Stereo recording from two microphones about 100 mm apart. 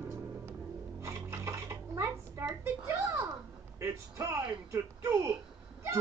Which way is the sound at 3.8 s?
30° right (ahead or behind).